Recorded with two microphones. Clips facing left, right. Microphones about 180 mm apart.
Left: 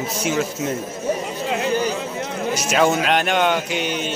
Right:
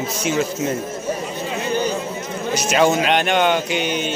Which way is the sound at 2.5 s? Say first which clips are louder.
Right 2 dB; 5° left (ahead or behind).